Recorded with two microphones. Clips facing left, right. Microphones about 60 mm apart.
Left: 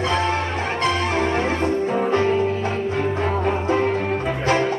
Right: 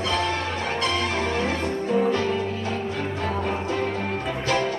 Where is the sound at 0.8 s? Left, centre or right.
Left.